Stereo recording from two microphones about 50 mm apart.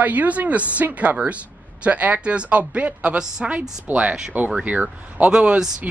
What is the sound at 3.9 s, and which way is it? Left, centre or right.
Speech, right.